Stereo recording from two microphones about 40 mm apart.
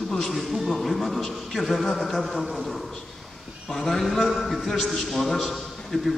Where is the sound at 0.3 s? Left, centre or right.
Centre.